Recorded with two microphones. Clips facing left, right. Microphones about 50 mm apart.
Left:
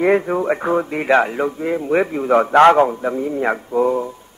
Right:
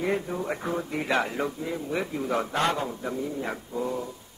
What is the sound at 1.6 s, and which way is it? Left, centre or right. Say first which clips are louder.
A man's voice: left 12 dB; left.